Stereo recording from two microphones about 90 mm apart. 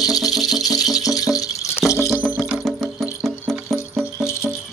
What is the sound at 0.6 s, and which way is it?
Rattle, 40° left (ahead or behind).